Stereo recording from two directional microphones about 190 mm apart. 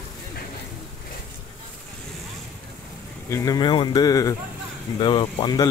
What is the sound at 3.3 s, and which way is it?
Speech, 20° left (ahead or behind).